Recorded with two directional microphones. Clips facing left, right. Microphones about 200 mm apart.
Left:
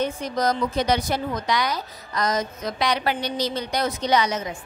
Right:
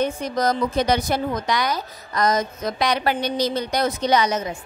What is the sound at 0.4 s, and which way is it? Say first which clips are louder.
A woman's voice: right 2 dB; 50° right (ahead or behind).